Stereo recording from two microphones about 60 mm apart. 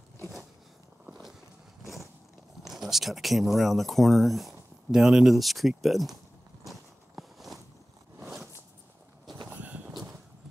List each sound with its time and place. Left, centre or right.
2.6 s speech: centre
6.6 s walk: centre
9.5 s a sound: right